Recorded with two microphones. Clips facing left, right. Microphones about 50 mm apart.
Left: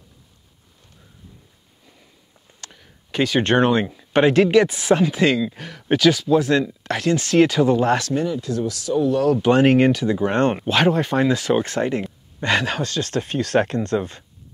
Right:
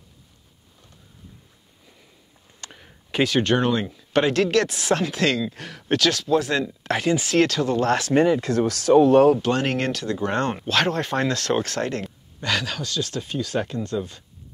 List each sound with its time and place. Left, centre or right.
2.6 s a sound: centre
3.4 s speech: left
3.8 s speech: centre
4.5 s speech: centre
7.4 s speech: centre
8.1 s speech: right
9.4 s speech: centre
10.4 s speech: left
10.7 s speech: centre
12.4 s speech: left